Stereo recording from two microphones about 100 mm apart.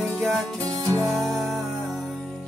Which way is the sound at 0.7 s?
35° right (ahead or behind).